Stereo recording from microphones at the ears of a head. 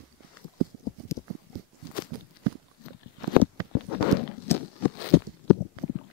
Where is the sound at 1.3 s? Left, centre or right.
Right.